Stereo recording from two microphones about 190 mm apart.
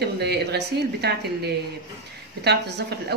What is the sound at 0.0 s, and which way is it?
A woman's voice, 60° right (ahead or behind).